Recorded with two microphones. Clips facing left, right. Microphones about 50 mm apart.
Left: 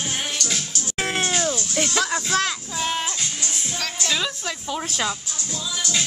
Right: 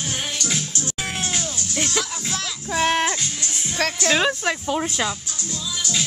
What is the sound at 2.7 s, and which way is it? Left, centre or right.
Music, right.